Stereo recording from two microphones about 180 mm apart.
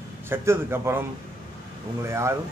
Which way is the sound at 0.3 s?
15° right (ahead or behind).